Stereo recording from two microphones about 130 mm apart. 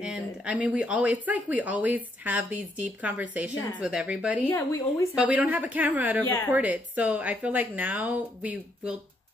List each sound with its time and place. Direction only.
0.0 s speech: 10° right (ahead or behind)
4.5 s speech: 20° left (ahead or behind)
5.1 s speech: 10° right (ahead or behind)
6.2 s a woman's voice: 15° left (ahead or behind)
6.5 s speech: 10° right (ahead or behind)